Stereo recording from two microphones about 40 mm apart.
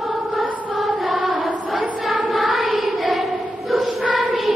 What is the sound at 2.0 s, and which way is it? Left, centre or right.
Choir, centre.